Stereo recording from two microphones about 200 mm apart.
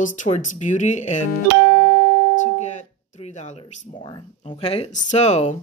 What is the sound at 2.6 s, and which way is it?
Music, 35° left (ahead or behind).